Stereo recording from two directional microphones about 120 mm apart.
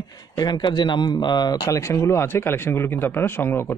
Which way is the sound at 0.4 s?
35° left (ahead or behind).